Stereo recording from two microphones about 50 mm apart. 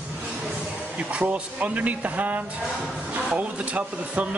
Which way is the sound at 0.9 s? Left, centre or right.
Right.